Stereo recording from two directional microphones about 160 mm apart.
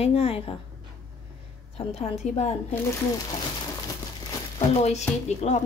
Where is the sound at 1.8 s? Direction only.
40° left (ahead or behind).